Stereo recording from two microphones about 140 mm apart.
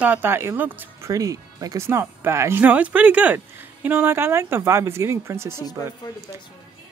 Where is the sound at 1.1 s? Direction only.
25° right (ahead or behind).